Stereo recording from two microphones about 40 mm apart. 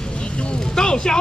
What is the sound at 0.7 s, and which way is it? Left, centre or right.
Speech, centre.